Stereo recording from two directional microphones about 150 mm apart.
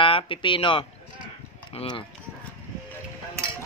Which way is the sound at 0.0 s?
35° left (ahead or behind).